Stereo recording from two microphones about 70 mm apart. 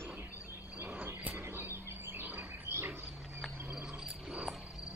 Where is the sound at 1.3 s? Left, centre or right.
Right.